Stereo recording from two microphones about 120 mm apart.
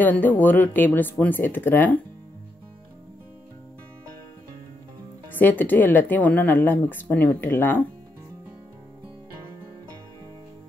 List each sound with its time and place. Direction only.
0.0 s a woman's voice: 15° left (ahead or behind)
5.3 s a woman's voice: 15° left (ahead or behind)